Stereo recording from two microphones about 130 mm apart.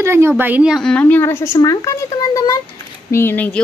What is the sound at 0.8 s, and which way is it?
Speech, 10° left (ahead or behind).